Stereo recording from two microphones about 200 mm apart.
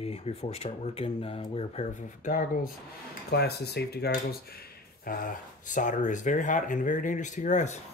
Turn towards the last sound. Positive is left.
turn(degrees=35)  # may be behind; listen again after turning